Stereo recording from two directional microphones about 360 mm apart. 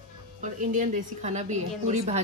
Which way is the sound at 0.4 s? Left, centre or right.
Right.